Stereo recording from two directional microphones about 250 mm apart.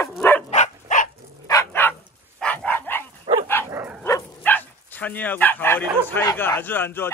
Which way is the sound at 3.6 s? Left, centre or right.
Centre.